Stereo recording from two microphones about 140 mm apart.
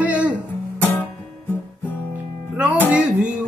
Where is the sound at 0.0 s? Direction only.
10° right (ahead or behind).